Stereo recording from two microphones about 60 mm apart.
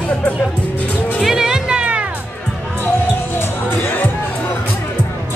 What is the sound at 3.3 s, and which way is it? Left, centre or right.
Music, left.